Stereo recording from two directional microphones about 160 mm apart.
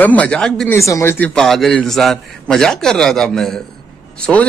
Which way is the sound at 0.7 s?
15° left (ahead or behind).